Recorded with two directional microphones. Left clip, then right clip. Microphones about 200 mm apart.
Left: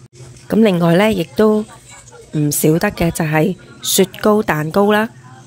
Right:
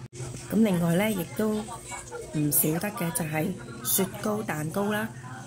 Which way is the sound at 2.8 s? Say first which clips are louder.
Left 14 dB; 50° left (ahead or behind).